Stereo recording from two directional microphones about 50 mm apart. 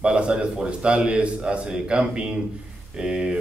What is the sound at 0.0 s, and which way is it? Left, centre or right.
A man's voice, right.